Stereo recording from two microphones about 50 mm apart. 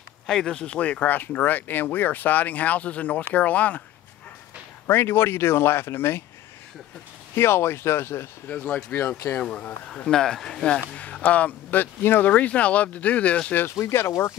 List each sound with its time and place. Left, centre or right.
0.3 s speech: centre; by 3.8 s left
4.8 s speech: left
7.3 s speech: left
8.5 s speech: left
9.9 s speech: centre
10.8 s speech: left
11.8 s speech: left
13.7 s speech: left